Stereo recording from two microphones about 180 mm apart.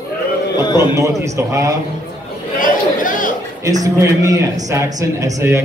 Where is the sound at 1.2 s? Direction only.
15° right (ahead or behind).